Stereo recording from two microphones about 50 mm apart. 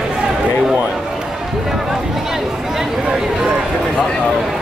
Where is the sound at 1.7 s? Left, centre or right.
Centre.